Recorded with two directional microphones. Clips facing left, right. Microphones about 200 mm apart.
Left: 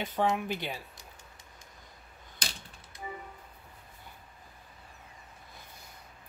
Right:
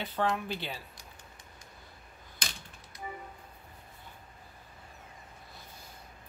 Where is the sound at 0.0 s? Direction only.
15° left (ahead or behind).